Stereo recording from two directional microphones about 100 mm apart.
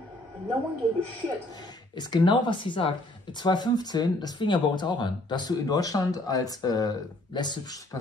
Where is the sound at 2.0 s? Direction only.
50° left (ahead or behind).